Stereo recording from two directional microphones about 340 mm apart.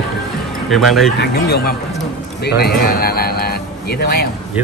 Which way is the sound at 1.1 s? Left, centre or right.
Left.